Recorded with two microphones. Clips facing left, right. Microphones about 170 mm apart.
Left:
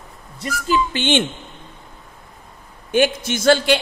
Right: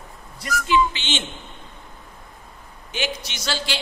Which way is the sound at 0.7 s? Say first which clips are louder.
Left 3 dB; 50° left (ahead or behind).